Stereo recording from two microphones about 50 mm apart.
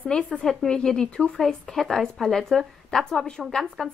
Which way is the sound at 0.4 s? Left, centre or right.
Centre.